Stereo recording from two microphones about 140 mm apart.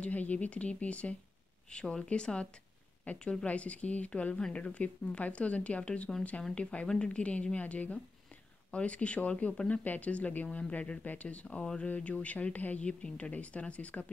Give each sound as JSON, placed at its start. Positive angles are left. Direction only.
{"t": 0.0, "sound": "speech", "side_deg": 10}